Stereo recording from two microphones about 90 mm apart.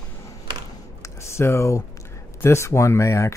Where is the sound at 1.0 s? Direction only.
30° left (ahead or behind).